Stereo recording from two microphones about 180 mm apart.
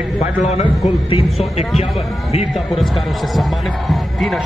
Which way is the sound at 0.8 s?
35° left (ahead or behind).